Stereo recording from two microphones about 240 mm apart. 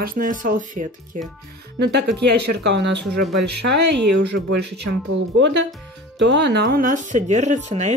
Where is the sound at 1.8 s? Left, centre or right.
Right.